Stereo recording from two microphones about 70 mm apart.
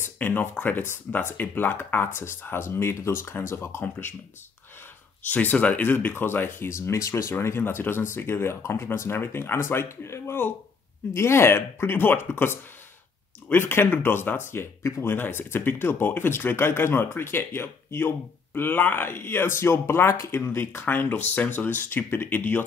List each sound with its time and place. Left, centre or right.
0.0 s speech: left
5.2 s speech: left
15.0 s speech: left